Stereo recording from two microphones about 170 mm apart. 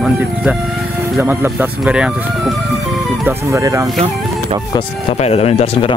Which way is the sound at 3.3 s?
20° right (ahead or behind).